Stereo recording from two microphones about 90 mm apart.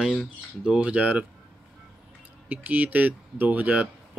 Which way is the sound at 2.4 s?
20° right (ahead or behind).